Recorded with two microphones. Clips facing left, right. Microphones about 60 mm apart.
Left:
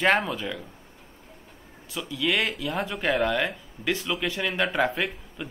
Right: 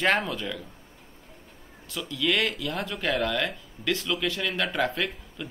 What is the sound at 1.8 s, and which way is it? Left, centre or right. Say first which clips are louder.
Speech: even; centre.